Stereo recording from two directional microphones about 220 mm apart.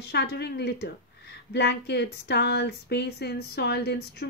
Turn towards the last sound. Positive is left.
turn(degrees=50)  # may be behind; listen again after turning